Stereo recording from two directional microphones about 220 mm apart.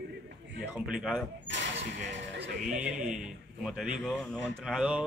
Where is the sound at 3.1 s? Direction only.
Centre (ahead or behind).